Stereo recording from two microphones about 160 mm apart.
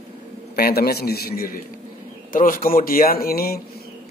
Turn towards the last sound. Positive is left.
turn(degrees=70)  # may be behind; listen again after turning